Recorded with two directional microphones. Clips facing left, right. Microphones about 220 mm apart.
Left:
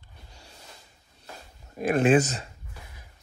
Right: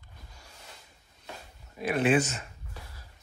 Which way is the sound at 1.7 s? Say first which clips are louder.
Left 4 dB; 50° left (ahead or behind).